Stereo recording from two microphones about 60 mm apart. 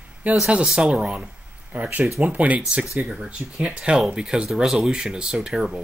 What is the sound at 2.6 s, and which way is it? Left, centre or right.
Speech, centre.